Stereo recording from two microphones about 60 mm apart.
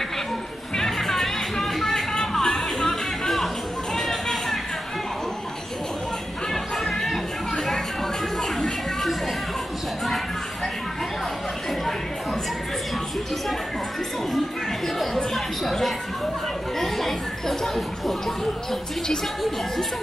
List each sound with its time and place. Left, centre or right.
0.7 s music: centre
6.5 s music: centre
8.4 s a sound: centre
15.3 s music: centre